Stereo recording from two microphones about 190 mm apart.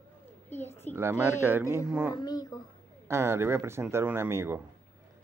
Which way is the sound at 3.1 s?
15° right (ahead or behind).